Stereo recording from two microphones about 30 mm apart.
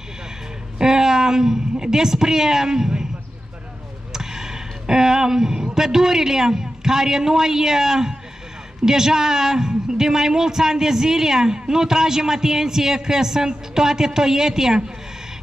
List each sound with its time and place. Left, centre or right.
0.7 s speech: centre
4.1 s a man's voice: centre